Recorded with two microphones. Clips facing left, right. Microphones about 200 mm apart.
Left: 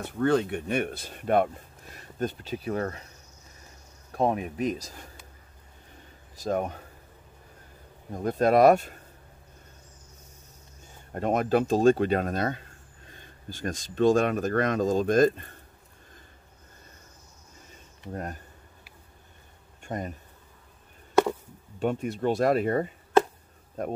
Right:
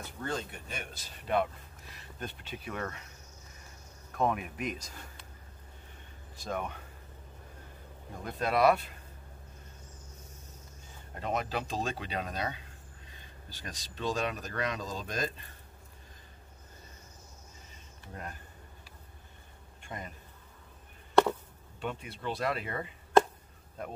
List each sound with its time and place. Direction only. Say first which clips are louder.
0.0 s speech: left 13 dB; 65° left (ahead or behind); by 3.1 s 35° left (ahead or behind)
4.1 s speech: left 5 dB; 35° left (ahead or behind)
6.3 s speech: left 8 dB; 40° left (ahead or behind)
8.1 s speech: left 10 dB; 45° left (ahead or behind)
11.1 s speech: left 10 dB; 50° left (ahead or behind)
18.1 s speech: left 8 dB; 40° left (ahead or behind)
19.8 s bee: left 9 dB; 45° left (ahead or behind)
21.7 s speech: left 11 dB; 45° left (ahead or behind)